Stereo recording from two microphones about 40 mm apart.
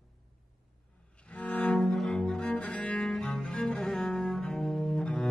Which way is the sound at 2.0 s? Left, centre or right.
Centre.